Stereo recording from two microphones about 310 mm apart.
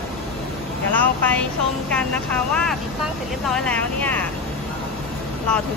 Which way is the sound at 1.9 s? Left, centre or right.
Centre.